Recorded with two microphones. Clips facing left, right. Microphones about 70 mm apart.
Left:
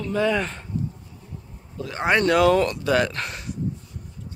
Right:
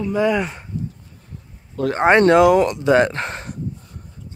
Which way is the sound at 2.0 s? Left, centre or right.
Right.